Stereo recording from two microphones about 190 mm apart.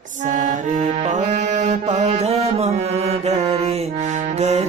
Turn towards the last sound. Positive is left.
turn(degrees=-35)  # may be behind; listen again after turning